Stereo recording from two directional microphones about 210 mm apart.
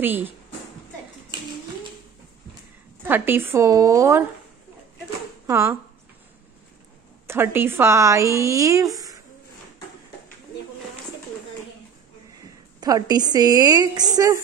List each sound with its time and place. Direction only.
0.0 s a woman's voice: 10° right (ahead or behind)
3.0 s a woman's voice: 10° right (ahead or behind)
5.5 s a woman's voice: 15° right (ahead or behind)
7.2 s a woman's voice: 10° right (ahead or behind)
12.8 s a woman's voice: 20° right (ahead or behind)